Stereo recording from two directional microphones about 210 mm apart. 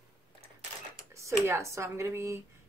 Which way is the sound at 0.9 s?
15° right (ahead or behind).